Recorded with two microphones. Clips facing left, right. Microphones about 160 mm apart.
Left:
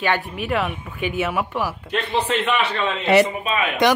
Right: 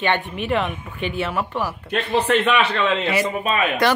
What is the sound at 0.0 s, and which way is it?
Speech, 5° left (ahead or behind).